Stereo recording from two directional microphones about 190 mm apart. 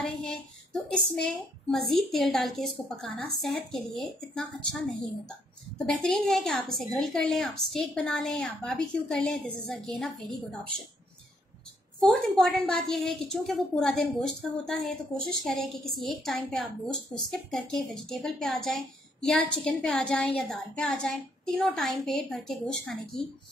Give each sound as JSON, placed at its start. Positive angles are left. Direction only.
{"t": 0.0, "sound": "child singing", "side_deg": 5}
{"t": 1.2, "sound": "a woman's voice", "side_deg": 0}
{"t": 5.9, "sound": "a woman's voice", "side_deg": 5}
{"t": 12.0, "sound": "a woman's voice", "side_deg": 0}